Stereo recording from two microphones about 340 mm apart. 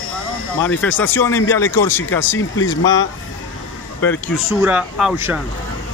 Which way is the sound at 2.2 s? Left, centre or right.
Left.